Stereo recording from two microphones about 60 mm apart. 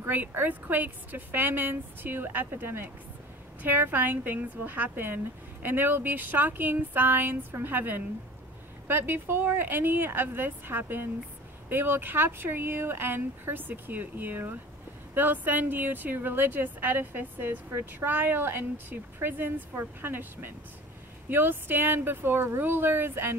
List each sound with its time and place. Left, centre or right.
0.3 s speech: right